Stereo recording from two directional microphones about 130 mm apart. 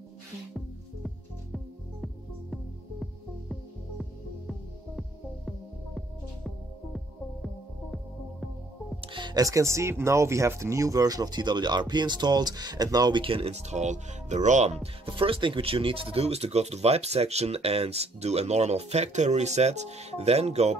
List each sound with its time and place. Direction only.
0.6 s music: centre (ahead or behind)
7.4 s hum: centre (ahead or behind)
9.0 s speech: 40° right (ahead or behind)
13.2 s speech: 45° right (ahead or behind)